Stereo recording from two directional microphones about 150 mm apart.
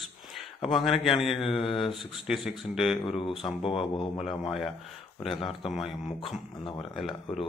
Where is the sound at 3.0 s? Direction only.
35° left (ahead or behind).